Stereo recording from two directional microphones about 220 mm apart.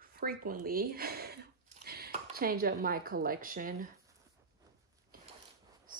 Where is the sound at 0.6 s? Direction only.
45° right (ahead or behind).